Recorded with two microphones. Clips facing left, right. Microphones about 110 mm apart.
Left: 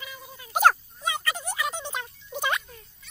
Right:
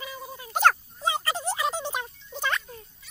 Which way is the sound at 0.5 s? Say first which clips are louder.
Left 1 dB; 10° left (ahead or behind).